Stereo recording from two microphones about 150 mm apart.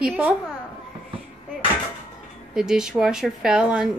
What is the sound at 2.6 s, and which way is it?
Speech, 5° right (ahead or behind).